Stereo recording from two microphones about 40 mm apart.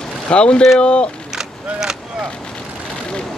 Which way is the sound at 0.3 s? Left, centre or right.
Left.